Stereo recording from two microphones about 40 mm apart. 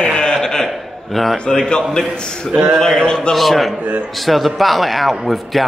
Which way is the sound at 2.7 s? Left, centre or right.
Centre.